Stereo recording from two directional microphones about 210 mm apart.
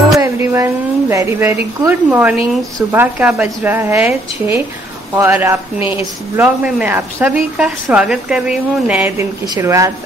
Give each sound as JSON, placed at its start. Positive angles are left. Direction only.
{"t": 0.2, "sound": "a sound", "side_deg": -15}
{"t": 2.9, "sound": "a woman's voice", "side_deg": -10}
{"t": 5.8, "sound": "a woman's voice", "side_deg": 30}
{"t": 6.3, "sound": "a woman's voice", "side_deg": -10}